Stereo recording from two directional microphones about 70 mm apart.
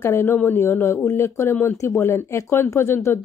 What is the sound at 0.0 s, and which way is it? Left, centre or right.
Speech, left.